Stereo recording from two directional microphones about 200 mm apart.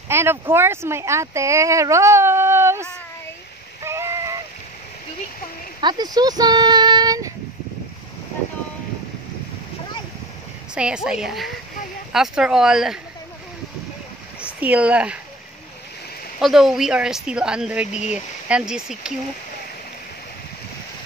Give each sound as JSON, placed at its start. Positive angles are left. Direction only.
{"t": 0.1, "sound": "speech", "side_deg": -10}
{"t": 3.8, "sound": "a sound", "side_deg": -15}
{"t": 5.8, "sound": "speech", "side_deg": -20}
{"t": 10.7, "sound": "speech", "side_deg": -5}
{"t": 14.6, "sound": "speech", "side_deg": -5}
{"t": 16.3, "sound": "speech", "side_deg": 0}